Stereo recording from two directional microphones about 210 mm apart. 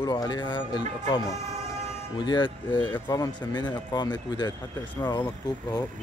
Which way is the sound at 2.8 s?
10° left (ahead or behind).